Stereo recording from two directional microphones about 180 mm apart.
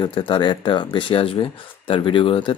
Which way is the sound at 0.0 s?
25° left (ahead or behind).